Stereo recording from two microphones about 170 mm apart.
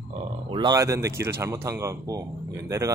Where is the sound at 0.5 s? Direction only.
25° right (ahead or behind).